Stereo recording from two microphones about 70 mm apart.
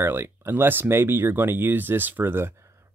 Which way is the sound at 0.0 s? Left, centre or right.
Right.